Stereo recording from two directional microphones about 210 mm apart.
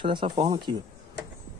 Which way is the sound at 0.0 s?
25° right (ahead or behind).